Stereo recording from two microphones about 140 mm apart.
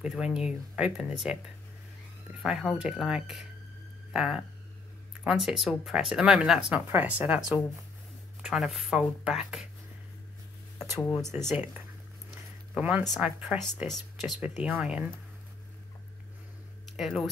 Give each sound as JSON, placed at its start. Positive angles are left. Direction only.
{"t": 0.0, "sound": "speech", "side_deg": -5}
{"t": 2.4, "sound": "speech", "side_deg": -5}
{"t": 11.2, "sound": "speech", "side_deg": -15}
{"t": 12.7, "sound": "speech", "side_deg": -5}
{"t": 16.9, "sound": "speech", "side_deg": 0}